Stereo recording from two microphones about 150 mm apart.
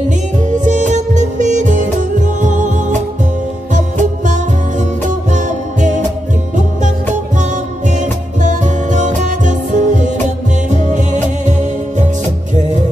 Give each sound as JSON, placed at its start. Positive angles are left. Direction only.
{"t": 0.5, "sound": "music", "side_deg": -55}
{"t": 7.9, "sound": "music", "side_deg": -55}